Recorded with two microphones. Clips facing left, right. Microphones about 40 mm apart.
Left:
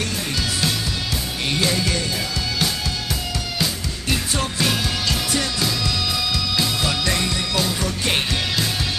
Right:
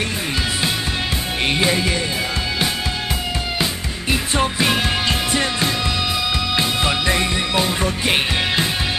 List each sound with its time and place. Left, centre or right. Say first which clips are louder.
1.5 s music: right 2 dB; right
4.1 s music: right 4 dB; right